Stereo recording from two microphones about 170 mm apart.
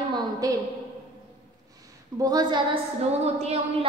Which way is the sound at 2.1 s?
25° right (ahead or behind).